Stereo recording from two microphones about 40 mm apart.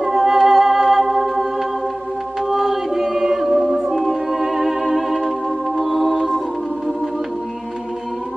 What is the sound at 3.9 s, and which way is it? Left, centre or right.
Music, centre.